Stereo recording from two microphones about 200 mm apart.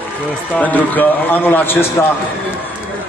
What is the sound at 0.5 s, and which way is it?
A man's voice, 10° left (ahead or behind).